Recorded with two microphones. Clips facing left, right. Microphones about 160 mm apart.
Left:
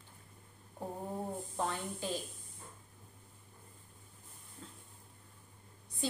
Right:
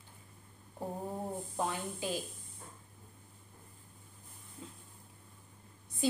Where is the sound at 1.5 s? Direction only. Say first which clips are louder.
Right 1 dB; 5° right (ahead or behind).